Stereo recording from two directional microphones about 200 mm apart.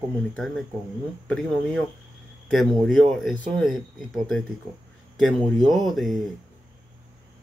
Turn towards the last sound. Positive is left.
turn(degrees=0)  # may be behind; listen again after turning